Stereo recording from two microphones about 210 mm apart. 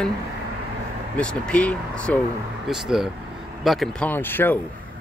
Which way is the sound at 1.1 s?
5° left (ahead or behind).